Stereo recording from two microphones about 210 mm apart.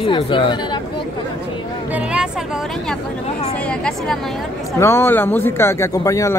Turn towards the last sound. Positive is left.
turn(degrees=15)  # may be behind; listen again after turning